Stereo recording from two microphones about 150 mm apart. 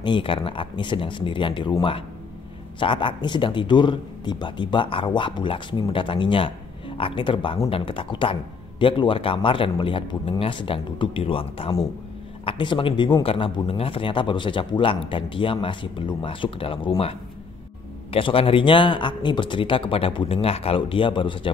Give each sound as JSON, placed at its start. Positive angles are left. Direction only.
{"t": 0.0, "sound": "speech", "side_deg": 35}
{"t": 18.1, "sound": "speech", "side_deg": 40}